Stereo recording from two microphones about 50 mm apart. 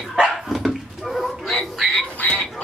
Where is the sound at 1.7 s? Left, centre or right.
Centre.